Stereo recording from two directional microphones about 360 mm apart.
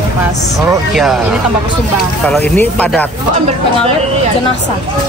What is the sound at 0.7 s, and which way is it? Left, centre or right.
Speech, centre.